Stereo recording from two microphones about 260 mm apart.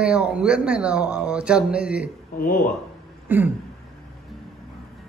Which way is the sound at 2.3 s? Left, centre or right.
Left.